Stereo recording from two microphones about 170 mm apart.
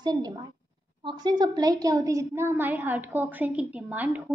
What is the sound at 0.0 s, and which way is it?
A woman's voice, 25° right (ahead or behind).